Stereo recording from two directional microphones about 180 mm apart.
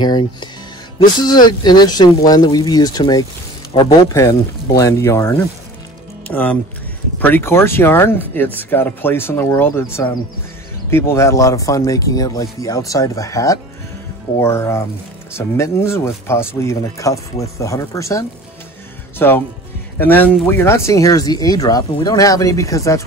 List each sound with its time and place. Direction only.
0.0 s speech: 25° left (ahead or behind)